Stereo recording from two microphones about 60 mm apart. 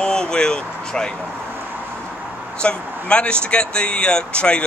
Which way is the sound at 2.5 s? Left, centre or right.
Centre.